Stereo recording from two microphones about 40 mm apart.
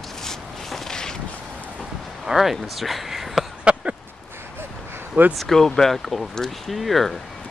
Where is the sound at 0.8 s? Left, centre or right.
Centre.